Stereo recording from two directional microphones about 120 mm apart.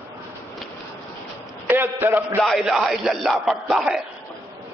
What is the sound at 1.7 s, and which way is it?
Speech, 20° right (ahead or behind).